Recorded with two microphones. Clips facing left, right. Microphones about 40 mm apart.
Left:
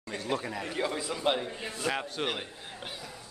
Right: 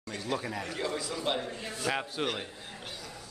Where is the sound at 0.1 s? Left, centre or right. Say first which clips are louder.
Left 1 dB; centre.